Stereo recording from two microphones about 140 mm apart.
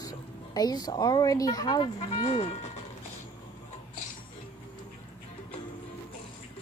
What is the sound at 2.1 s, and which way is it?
Speech, 45° left (ahead or behind).